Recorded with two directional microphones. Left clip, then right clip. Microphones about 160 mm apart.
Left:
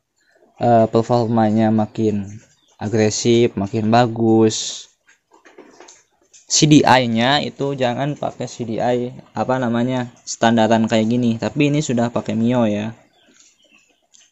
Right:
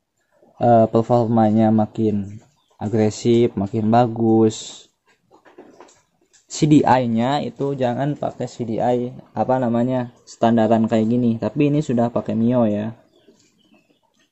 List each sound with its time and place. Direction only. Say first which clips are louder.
0.6 s speech: even; 15° right (ahead or behind)
6.4 s speech: left 3 dB; 5° right (ahead or behind)